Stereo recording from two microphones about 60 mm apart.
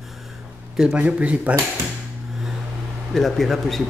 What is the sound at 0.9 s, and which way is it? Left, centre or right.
Speech, right.